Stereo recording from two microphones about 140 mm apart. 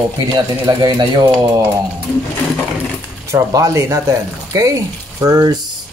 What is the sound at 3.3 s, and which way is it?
Speech, 25° right (ahead or behind).